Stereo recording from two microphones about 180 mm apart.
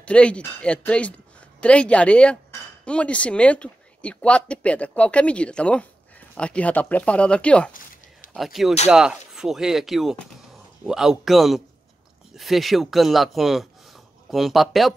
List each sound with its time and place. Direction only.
0.0 s speech: 5° left (ahead or behind)
7.7 s a sound: 50° left (ahead or behind)
8.8 s speech: 5° right (ahead or behind)